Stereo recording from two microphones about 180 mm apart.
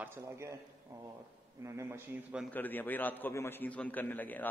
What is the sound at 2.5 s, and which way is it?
A man's voice, 10° left (ahead or behind).